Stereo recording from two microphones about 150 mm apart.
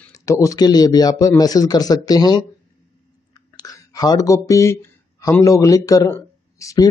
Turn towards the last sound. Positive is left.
turn(degrees=20)  # may be behind; listen again after turning